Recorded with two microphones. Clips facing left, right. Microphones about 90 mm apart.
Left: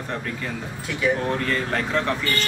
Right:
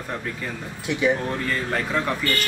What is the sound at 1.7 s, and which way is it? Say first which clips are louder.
Speech: left 1 dB; 10° right (ahead or behind).